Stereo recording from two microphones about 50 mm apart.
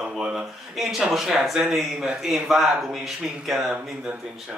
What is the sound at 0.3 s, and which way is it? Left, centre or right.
Speech, centre.